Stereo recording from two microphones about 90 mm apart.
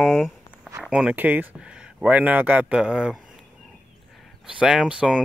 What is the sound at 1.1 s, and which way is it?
Speech, 20° right (ahead or behind).